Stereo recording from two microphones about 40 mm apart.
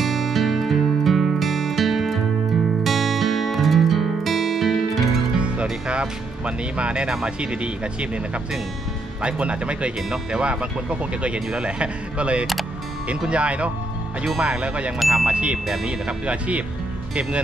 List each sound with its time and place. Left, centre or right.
0.0 s music: centre
5.4 s speech: right
9.2 s speech: right
15.0 s ding: centre
15.2 s speech: right